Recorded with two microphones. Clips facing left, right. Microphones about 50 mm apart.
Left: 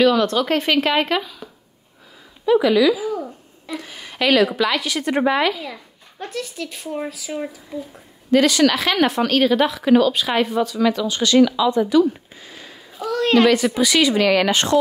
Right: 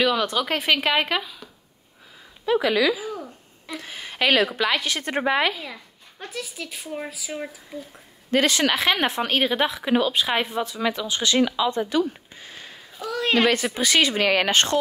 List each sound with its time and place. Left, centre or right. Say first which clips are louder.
0.0 s a child's voice: left 6 dB; centre
2.4 s speech: left 5 dB; right
5.6 s a child's voice: left 4 dB; centre
8.3 s speech: left 5 dB; right
13.0 s a woman's voice: left 5 dB; centre
13.7 s speech: left 4 dB; right